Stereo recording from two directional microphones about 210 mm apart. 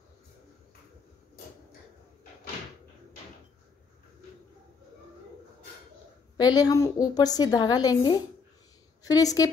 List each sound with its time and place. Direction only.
6.3 s a woman's voice: 20° left (ahead or behind)